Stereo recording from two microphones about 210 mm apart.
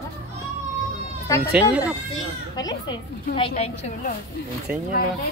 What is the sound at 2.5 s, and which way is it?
A woman's voice, 20° left (ahead or behind).